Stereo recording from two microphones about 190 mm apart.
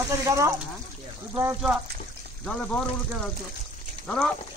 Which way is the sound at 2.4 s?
5° left (ahead or behind).